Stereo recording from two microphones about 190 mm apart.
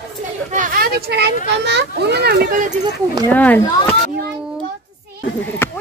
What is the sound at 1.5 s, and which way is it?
A child's voice, 65° right (ahead or behind).